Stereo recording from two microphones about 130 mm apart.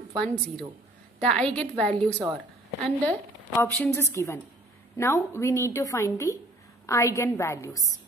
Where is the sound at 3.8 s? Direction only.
20° left (ahead or behind).